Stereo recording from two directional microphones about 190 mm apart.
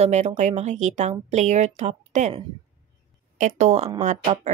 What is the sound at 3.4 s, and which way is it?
Speech, 35° right (ahead or behind).